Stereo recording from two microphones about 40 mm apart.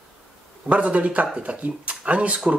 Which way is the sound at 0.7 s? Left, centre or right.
Right.